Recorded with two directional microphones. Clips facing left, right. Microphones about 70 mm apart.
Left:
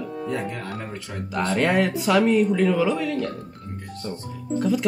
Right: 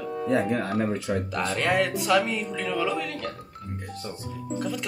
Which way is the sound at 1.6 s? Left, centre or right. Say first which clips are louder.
Left 3 dB; centre.